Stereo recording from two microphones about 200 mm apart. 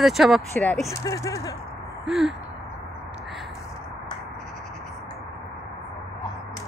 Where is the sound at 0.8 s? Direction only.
15° left (ahead or behind).